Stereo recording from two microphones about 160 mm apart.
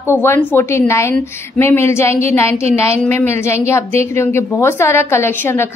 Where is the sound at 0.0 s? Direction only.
15° left (ahead or behind).